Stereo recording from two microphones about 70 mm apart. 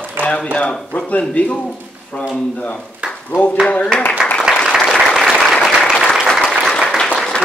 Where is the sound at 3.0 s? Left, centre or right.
Centre.